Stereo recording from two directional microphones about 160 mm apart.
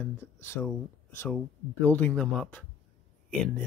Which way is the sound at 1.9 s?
10° left (ahead or behind).